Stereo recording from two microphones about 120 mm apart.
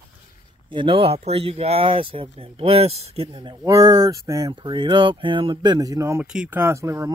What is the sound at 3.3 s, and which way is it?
Speech, 35° right (ahead or behind).